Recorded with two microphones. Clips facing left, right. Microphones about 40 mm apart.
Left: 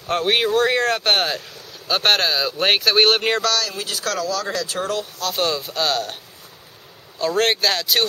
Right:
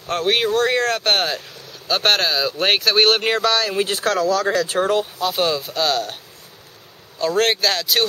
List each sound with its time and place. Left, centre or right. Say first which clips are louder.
0.0 s speech: even; centre
3.4 s speech: right 4 dB; right
5.3 s speech: left 1 dB; centre
7.2 s speech: right 1 dB; centre